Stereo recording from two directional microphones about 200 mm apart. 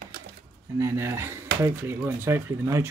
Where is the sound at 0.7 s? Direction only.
15° right (ahead or behind).